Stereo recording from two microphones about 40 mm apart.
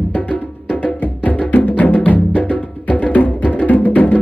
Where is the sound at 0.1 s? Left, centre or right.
Left.